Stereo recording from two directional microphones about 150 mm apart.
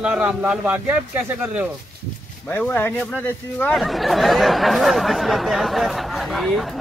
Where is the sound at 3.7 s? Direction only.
Centre (ahead or behind).